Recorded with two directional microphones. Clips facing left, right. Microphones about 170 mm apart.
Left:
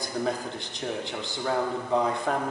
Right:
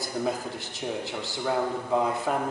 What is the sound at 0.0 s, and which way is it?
A man's voice, 5° right (ahead or behind).